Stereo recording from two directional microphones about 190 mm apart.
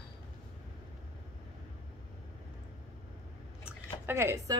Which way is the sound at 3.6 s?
10° right (ahead or behind).